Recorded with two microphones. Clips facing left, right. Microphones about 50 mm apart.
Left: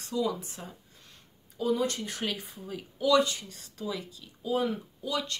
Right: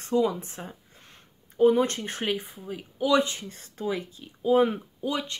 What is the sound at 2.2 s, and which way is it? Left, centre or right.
Speech, right.